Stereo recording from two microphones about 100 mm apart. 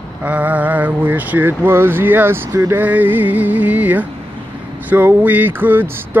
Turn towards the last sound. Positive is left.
turn(degrees=-20)  # may be behind; listen again after turning